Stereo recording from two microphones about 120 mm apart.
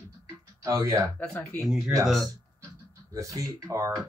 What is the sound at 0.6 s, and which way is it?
Speech, 30° right (ahead or behind).